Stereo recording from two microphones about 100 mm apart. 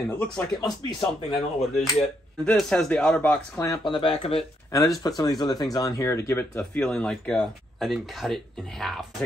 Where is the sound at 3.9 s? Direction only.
55° left (ahead or behind).